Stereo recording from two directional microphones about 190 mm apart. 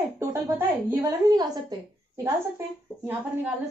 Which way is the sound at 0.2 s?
10° right (ahead or behind).